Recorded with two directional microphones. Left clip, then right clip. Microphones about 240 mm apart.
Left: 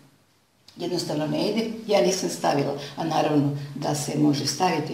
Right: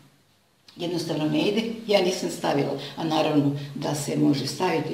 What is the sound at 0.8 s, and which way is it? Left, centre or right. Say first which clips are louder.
A man's voice: left 1 dB; centre.